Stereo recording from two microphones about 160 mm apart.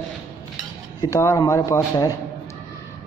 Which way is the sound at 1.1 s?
20° left (ahead or behind).